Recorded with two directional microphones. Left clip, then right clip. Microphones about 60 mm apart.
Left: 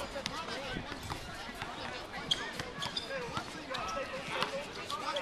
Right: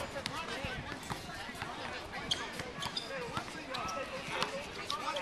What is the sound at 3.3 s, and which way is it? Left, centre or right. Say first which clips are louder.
Basketball bounce: left 1 dB; centre.